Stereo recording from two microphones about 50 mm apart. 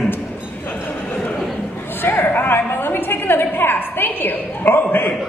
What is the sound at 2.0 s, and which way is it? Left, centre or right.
A woman's voice, left.